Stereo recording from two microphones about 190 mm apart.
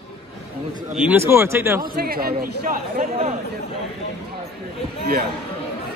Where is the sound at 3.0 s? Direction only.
35° right (ahead or behind).